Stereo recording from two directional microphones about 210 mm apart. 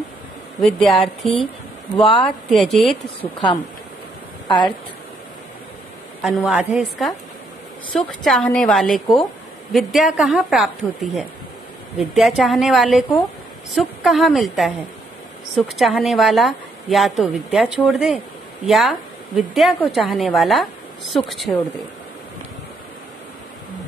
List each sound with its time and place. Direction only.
0.6 s a woman's voice: centre (ahead or behind)
2.0 s speech: 25° left (ahead or behind)
2.2 s a woman's voice: centre (ahead or behind)
6.2 s a woman's voice: 5° right (ahead or behind)